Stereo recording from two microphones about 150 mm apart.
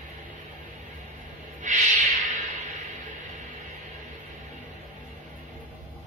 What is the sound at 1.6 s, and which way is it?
Owl, 55° right (ahead or behind).